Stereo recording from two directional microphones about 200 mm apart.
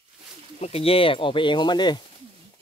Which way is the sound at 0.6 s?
30° left (ahead or behind).